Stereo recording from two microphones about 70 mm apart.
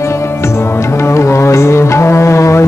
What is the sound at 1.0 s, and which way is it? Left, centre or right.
Music, left.